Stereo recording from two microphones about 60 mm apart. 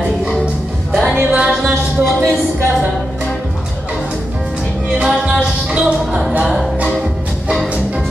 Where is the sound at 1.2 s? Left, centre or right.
Centre.